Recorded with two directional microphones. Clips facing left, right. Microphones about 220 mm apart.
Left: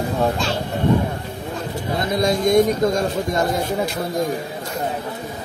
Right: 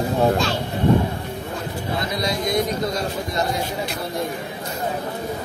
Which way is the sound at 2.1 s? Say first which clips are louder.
Left 8 dB; 50° left (ahead or behind).